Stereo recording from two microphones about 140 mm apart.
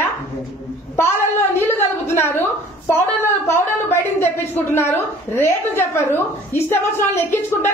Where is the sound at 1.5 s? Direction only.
15° left (ahead or behind).